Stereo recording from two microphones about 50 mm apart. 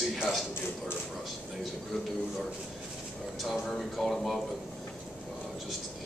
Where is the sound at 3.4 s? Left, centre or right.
Centre.